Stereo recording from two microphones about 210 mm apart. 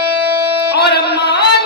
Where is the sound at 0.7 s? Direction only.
50° left (ahead or behind).